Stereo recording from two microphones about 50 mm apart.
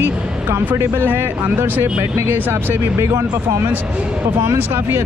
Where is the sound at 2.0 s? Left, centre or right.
Right.